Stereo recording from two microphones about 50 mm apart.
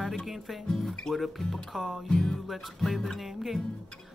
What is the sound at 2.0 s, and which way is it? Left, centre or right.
Speech, centre.